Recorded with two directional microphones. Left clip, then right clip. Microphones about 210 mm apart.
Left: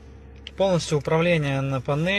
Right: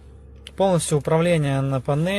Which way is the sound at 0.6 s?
25° right (ahead or behind).